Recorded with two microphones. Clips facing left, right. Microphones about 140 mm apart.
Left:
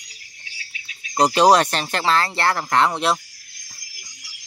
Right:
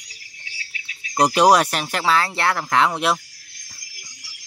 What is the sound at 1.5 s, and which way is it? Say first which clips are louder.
Speech: even; 10° right (ahead or behind).